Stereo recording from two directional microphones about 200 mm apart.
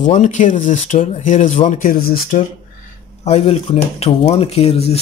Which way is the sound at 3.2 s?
30° left (ahead or behind).